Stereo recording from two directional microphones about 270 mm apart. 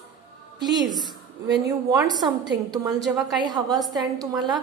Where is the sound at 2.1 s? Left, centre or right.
Centre.